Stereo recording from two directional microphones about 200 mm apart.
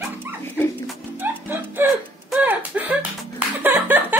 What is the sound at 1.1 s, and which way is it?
Music, 10° right (ahead or behind).